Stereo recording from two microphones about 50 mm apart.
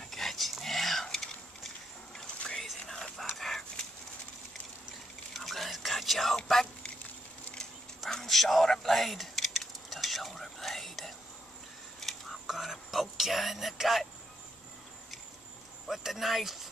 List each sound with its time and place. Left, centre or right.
0.1 s a sound: centre
2.9 s dog: centre
5.3 s whispering: centre
8.1 s keys jangling: centre
12.0 s whispering: centre
15.9 s speech: centre